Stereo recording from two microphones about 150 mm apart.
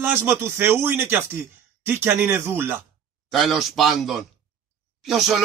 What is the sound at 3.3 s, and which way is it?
Speech, centre (ahead or behind).